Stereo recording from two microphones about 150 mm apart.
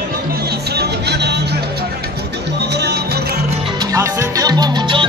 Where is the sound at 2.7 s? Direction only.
90° right.